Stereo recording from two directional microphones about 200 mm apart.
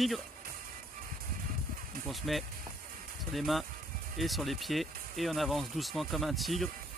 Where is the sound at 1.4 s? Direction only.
45° right (ahead or behind).